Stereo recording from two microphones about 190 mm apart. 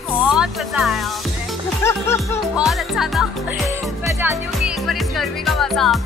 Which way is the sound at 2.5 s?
Centre (ahead or behind).